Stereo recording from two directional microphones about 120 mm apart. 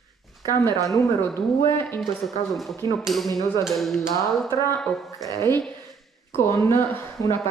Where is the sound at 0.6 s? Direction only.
25° left (ahead or behind).